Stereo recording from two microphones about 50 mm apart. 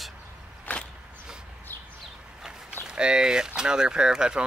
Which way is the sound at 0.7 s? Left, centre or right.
Left.